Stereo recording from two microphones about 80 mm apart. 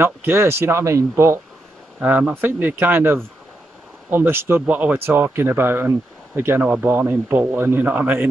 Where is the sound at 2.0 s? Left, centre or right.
Centre.